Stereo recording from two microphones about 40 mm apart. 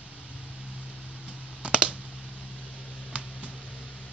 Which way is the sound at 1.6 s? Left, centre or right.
Right.